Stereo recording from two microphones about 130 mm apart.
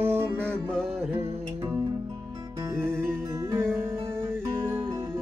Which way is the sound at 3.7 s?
20° right (ahead or behind).